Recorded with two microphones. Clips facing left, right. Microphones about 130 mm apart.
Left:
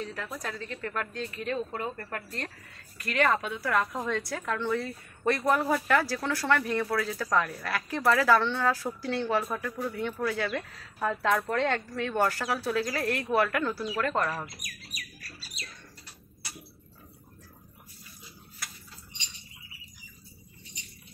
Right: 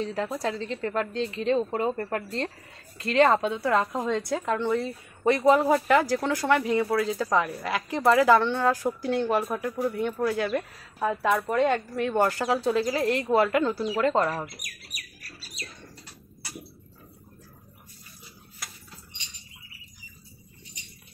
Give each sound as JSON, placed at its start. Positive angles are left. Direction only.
{"t": 0.0, "sound": "a woman's voice", "side_deg": -30}